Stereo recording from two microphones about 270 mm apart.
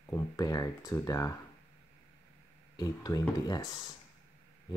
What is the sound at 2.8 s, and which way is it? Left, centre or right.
Speech, centre.